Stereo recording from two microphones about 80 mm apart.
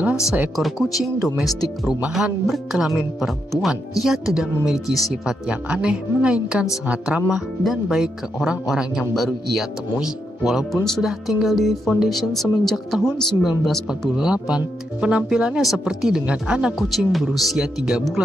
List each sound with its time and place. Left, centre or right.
0.6 s speech: centre
16.7 s speech: centre